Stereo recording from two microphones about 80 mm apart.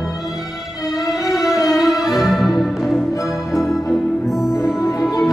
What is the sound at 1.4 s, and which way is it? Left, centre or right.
Music, left.